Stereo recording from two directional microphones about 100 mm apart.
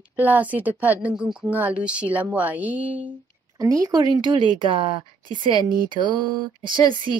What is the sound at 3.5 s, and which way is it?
A woman's voice, 35° right (ahead or behind).